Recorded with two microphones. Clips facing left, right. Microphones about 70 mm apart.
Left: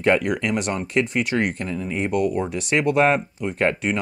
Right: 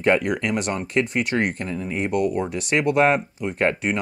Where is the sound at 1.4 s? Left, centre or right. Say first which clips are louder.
Even; right.